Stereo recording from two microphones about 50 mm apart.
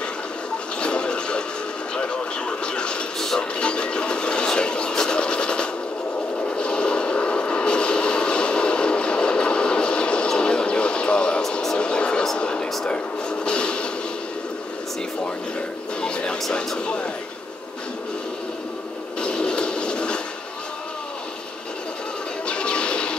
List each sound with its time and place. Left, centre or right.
0.7 s television: centre
2.0 s vehicle: left
3.3 s music: left
6.6 s vehicle: centre
11.6 s music: centre
12.4 s a sound: left
12.8 s television: centre
16.0 s music: centre
16.5 s a sound: centre
19.2 s a sound: centre
22.5 s music: left